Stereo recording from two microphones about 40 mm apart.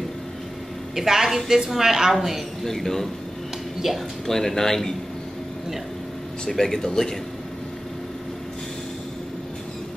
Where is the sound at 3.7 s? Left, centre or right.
Centre.